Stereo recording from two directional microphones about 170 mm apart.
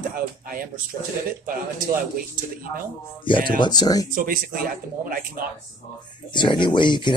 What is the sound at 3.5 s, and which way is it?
Speech, 25° left (ahead or behind).